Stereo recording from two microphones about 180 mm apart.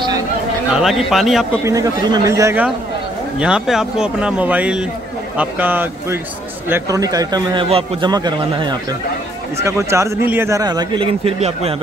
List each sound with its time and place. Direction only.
0.7 s a man's voice: centre (ahead or behind)
1.6 s a man's voice: 20° right (ahead or behind)
7.6 s a man's voice: 35° right (ahead or behind)